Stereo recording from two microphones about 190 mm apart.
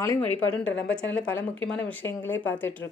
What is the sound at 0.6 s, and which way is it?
Speech, 85° left.